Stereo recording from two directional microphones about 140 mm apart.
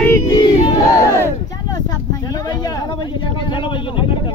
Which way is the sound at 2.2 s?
30° left (ahead or behind).